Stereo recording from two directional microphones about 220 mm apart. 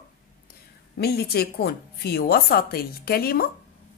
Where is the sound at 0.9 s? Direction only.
45° left (ahead or behind).